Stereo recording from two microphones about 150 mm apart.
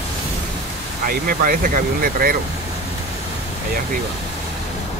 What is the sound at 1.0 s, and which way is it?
Speech, 75° right (ahead or behind).